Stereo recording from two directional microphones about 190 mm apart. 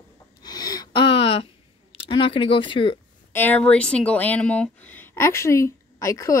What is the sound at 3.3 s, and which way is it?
Speech, 10° left (ahead or behind).